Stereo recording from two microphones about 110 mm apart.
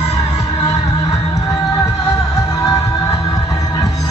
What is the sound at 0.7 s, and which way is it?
Music, 30° left (ahead or behind).